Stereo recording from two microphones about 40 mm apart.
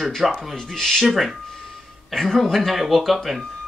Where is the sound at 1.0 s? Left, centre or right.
Centre.